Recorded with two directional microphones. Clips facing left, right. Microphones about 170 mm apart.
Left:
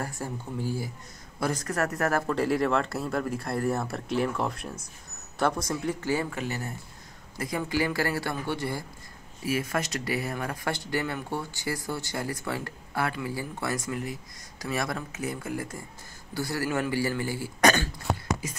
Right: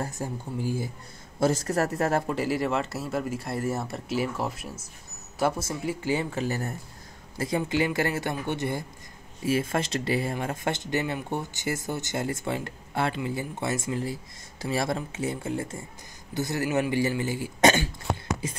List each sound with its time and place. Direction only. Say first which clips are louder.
0.0 s speech: right 2 dB; 20° right (ahead or behind)
1.4 s speech: right 4 dB; 25° right (ahead or behind)
2.3 s speech: left 1 dB; centre (ahead or behind)
6.3 s speech: right 4 dB; 40° right (ahead or behind)
7.3 s speech: right 3 dB; 25° right (ahead or behind)